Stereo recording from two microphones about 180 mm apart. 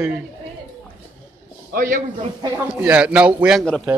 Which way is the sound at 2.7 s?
10° right (ahead or behind).